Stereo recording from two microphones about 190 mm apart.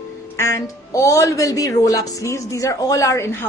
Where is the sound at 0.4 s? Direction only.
15° left (ahead or behind).